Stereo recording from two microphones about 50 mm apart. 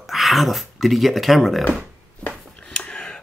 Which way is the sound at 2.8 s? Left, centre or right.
Centre.